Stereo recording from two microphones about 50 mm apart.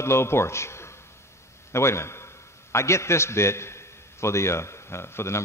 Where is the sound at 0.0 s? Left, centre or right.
Left.